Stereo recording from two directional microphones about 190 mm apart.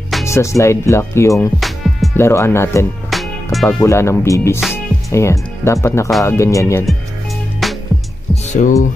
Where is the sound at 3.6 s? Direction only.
15° left (ahead or behind).